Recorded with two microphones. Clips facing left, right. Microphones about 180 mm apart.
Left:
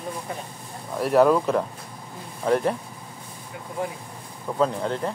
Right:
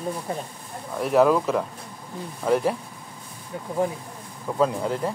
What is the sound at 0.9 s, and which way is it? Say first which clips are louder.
Speech: left 1 dB; centre (ahead or behind).